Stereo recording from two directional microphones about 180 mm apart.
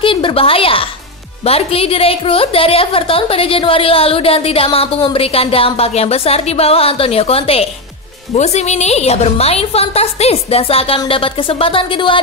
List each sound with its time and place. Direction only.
0.0 s a woman's voice: 30° left (ahead or behind)